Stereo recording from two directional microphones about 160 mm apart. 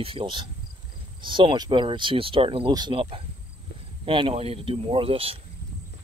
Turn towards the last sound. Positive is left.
turn(degrees=-35)  # may be behind; listen again after turning